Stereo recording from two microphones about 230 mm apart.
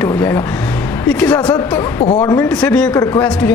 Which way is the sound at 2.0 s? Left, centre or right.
Left.